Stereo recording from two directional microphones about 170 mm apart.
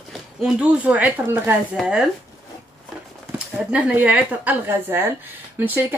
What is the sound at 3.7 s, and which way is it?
Speech, 10° right (ahead or behind).